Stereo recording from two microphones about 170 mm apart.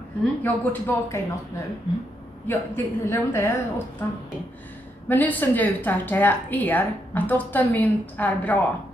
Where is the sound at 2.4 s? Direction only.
15° left (ahead or behind).